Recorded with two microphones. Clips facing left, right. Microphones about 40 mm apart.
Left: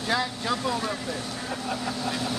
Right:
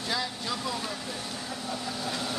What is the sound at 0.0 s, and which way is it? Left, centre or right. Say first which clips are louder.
Speech: left 5 dB; left.